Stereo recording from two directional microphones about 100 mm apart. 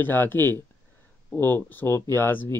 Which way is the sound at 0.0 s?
20° left (ahead or behind).